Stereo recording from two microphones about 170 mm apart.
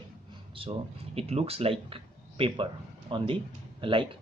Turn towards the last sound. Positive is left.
turn(degrees=-30)  # may be behind; listen again after turning